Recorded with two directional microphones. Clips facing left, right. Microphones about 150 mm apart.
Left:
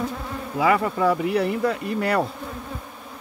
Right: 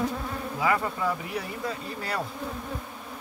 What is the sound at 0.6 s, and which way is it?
Insect, 90° left.